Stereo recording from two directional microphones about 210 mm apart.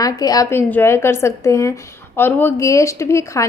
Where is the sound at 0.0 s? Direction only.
15° left (ahead or behind).